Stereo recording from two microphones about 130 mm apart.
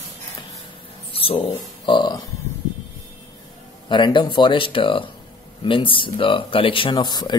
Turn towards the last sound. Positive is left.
turn(degrees=35)  # may be behind; listen again after turning